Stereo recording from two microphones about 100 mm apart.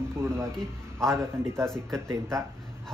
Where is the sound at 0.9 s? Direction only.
30° right (ahead or behind).